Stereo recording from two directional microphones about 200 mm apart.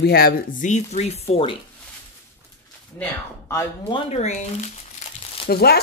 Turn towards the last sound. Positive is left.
turn(degrees=50)  # may be behind; listen again after turning